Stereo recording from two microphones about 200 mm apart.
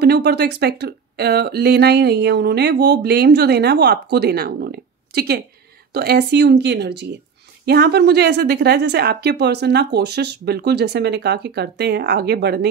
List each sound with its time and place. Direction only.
0.0 s speech: 55° right (ahead or behind)